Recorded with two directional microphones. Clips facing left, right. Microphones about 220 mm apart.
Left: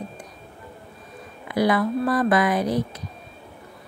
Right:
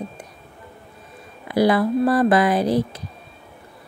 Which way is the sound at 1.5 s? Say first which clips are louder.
Right 3 dB; 30° right (ahead or behind).